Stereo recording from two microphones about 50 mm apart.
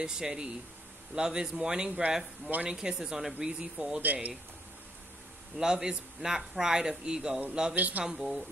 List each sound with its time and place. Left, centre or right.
0.0 s speech: centre
4.0 s speech: right
5.6 s speech: centre
7.7 s speech: right
8.0 s speech: centre